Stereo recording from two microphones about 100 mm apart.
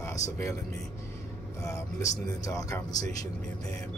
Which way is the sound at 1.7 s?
30° left (ahead or behind).